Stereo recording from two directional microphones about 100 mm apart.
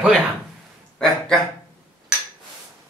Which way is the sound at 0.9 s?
5° left (ahead or behind).